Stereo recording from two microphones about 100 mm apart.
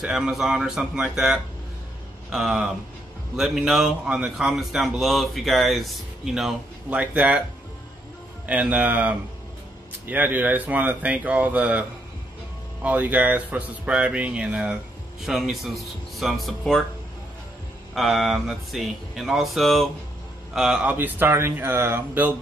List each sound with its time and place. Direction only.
0.0 s a man's voice: 5° right (ahead or behind)
6.9 s speech: 15° right (ahead or behind)
8.5 s speech: 10° right (ahead or behind)
12.8 s a man's voice: 15° right (ahead or behind); by 16.8 s 5° left (ahead or behind)
17.9 s a man's voice: centre (ahead or behind)
20.9 s speech: 20° right (ahead or behind)